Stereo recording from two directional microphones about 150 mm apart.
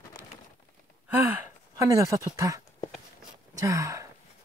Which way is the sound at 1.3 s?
20° right (ahead or behind).